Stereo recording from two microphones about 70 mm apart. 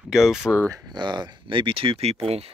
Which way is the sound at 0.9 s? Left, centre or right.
Right.